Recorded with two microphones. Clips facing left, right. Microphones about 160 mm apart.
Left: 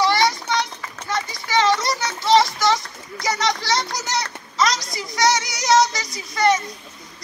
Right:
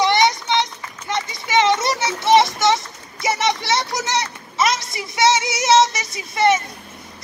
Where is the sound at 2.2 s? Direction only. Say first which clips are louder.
Right 2 dB; 20° right (ahead or behind).